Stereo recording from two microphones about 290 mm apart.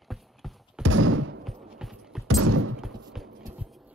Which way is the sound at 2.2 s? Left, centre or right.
Right.